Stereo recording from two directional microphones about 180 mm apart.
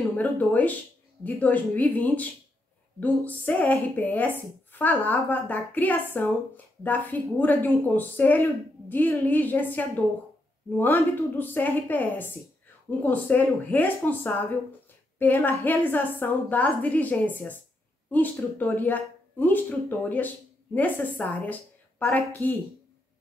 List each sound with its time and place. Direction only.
0.2 s a woman's voice: 10° left (ahead or behind)